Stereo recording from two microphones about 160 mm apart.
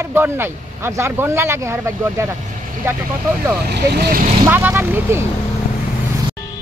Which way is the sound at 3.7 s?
85° right.